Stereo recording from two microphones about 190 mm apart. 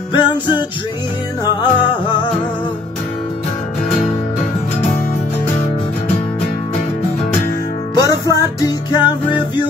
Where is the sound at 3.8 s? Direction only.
5° left (ahead or behind).